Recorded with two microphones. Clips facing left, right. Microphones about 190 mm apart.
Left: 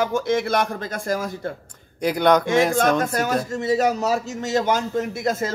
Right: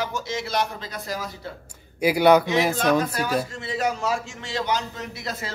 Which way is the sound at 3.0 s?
45° left (ahead or behind).